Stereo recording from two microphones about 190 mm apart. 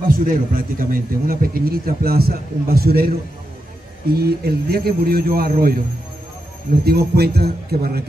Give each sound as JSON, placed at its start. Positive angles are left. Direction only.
{"t": 0.1, "sound": "a man's voice", "side_deg": -45}
{"t": 4.1, "sound": "a man's voice", "side_deg": -55}
{"t": 6.8, "sound": "a man's voice", "side_deg": -55}